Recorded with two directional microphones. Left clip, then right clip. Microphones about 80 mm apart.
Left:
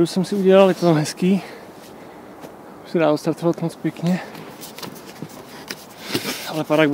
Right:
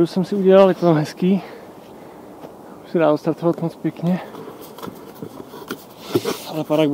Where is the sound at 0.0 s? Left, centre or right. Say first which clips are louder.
Right 1 dB; left.